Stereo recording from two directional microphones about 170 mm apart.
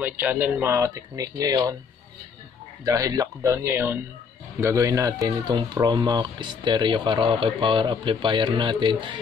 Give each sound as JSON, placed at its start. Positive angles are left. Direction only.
{"t": 0.0, "sound": "speech", "side_deg": -10}
{"t": 2.8, "sound": "speech", "side_deg": -20}